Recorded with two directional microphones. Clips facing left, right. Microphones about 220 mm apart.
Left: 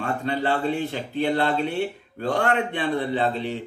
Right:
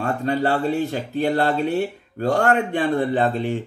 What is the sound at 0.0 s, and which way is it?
Speech, 40° right (ahead or behind).